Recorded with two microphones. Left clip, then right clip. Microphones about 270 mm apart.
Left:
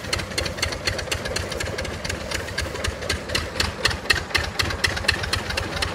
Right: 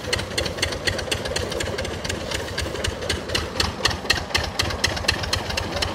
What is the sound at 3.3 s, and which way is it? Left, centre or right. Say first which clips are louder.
Engine: right 1 dB; right.